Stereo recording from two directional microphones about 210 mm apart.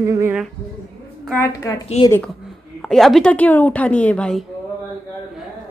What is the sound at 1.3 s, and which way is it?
Speech, 15° left (ahead or behind).